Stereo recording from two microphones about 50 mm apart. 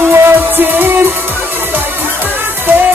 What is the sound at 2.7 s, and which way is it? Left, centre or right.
Music, right.